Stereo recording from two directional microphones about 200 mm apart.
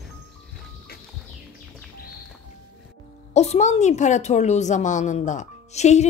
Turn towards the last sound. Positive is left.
turn(degrees=35)  # may be behind; listen again after turning